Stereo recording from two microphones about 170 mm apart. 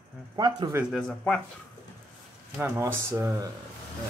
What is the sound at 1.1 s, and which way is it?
Speech, 5° left (ahead or behind).